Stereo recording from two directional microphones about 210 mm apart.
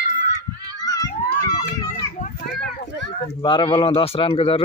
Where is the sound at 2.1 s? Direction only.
40° left (ahead or behind).